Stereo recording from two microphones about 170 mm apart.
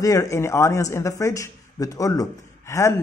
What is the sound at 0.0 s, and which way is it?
A man's voice, 20° left (ahead or behind).